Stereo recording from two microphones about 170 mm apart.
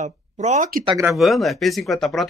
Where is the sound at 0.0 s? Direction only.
45° right (ahead or behind).